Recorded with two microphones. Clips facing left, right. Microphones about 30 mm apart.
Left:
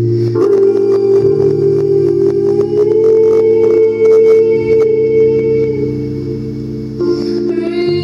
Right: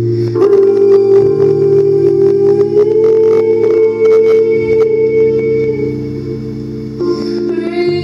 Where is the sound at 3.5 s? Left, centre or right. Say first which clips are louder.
Left 1 dB; right.